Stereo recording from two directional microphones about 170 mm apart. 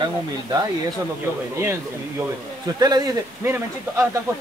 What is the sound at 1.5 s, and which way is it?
Speech, 15° right (ahead or behind).